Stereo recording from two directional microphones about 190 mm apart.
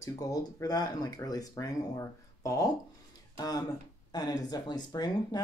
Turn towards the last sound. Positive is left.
turn(degrees=20)  # may be behind; listen again after turning